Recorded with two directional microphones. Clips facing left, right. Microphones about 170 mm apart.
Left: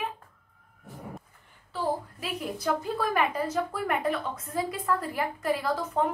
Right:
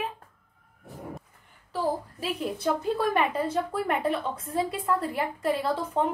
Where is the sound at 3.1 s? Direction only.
30° right (ahead or behind).